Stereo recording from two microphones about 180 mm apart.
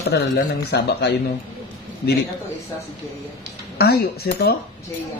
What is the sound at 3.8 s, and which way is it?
Speech, 60° left (ahead or behind).